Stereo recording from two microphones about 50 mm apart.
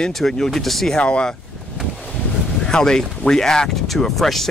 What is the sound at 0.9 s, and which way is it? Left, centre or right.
Speech, left.